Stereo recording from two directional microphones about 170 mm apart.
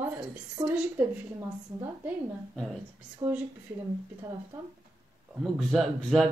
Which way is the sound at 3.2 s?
20° right (ahead or behind).